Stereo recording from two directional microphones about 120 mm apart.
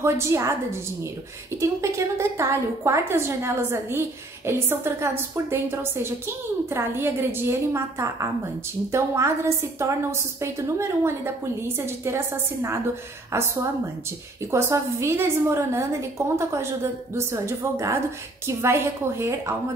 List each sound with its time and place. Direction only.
0.0 s a woman's voice: 25° right (ahead or behind)
13.3 s a woman's voice: 20° right (ahead or behind)